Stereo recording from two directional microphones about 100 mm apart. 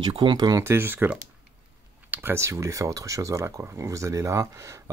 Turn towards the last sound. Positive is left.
turn(degrees=-30)  # may be behind; listen again after turning